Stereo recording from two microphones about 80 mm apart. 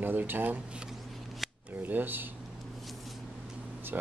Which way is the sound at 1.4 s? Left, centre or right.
Centre.